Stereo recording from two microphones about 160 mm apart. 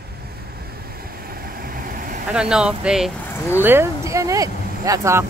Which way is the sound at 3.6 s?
15° right (ahead or behind).